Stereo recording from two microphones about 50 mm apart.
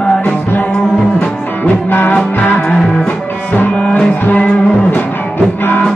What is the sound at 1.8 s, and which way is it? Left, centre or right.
Music, left.